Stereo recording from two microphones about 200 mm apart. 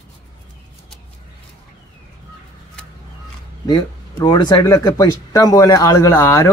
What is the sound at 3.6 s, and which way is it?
A man's voice, 20° left (ahead or behind).